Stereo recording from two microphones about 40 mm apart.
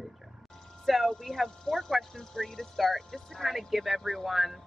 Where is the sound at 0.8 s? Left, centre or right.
Centre.